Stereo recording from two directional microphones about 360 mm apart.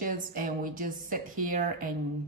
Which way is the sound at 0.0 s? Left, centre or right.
Right.